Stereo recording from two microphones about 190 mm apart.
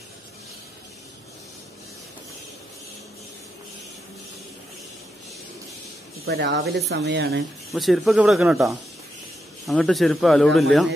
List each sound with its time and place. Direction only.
6.2 s speech: 65° right (ahead or behind)
7.7 s speech: centre (ahead or behind)